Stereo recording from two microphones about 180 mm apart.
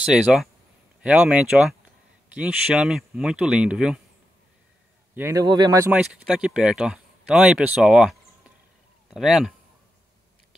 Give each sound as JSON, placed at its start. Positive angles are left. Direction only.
{"t": 0.0, "sound": "speech", "side_deg": -5}
{"t": 5.1, "sound": "speech", "side_deg": -15}
{"t": 5.9, "sound": "speech", "side_deg": -5}